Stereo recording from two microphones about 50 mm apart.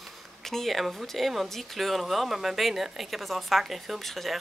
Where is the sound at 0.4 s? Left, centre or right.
Centre.